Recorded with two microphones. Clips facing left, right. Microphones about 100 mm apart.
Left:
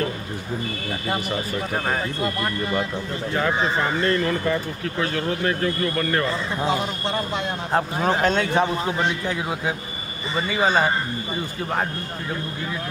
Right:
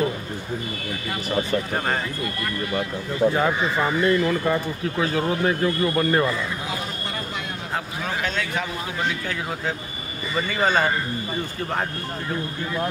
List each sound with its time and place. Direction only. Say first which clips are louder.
2.2 s speech: left 3 dB; 25° left (ahead or behind)
4.0 s speech: right 4 dB; 10° right (ahead or behind)
7.7 s a man's voice: left 7 dB; 35° left (ahead or behind)
10.6 s a man's voice: left 1 dB; 10° left (ahead or behind)